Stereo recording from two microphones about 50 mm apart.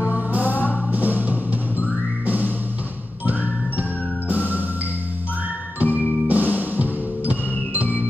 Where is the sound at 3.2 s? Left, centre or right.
Right.